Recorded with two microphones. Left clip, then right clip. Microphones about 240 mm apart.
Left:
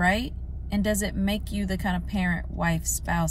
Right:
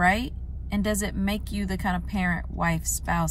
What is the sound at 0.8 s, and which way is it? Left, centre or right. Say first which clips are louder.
Speech: left 1 dB; centre.